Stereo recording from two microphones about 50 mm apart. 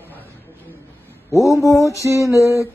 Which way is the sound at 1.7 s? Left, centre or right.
Left.